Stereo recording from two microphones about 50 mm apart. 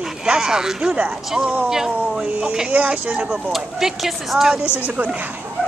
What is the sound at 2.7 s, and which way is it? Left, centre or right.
Speech, right.